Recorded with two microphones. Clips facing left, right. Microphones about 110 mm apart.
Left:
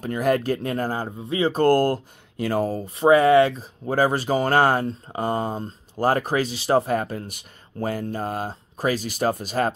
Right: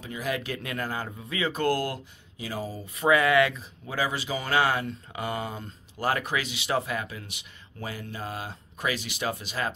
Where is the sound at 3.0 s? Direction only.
35° left (ahead or behind).